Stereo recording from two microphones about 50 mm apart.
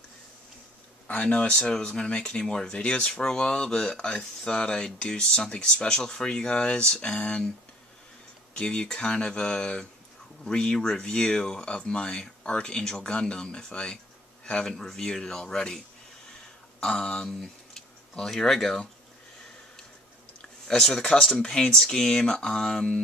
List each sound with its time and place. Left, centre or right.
1.0 s speech: left
8.5 s speech: centre
14.4 s a sound: centre
14.7 s speech: centre
16.8 s speech: centre
20.6 s speech: centre